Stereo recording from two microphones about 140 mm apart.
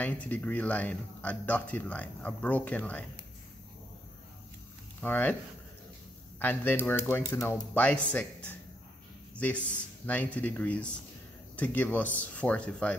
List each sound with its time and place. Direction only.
0.0 s speech: 10° left (ahead or behind)
5.0 s speech: 15° left (ahead or behind)
6.4 s speech: 15° left (ahead or behind)